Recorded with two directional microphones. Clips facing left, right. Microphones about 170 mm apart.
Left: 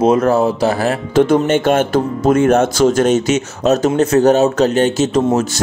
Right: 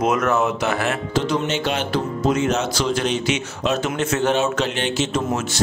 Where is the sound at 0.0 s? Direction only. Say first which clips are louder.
Left 7 dB; 30° left (ahead or behind).